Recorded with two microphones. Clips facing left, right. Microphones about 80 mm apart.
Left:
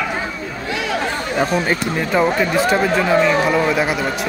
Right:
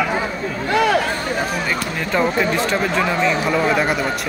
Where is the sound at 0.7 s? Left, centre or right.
Right.